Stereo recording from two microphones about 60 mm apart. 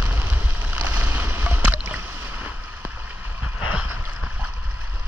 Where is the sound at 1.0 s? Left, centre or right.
Right.